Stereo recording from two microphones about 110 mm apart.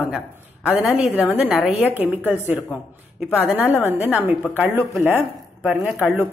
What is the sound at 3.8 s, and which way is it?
A woman's voice, 15° right (ahead or behind).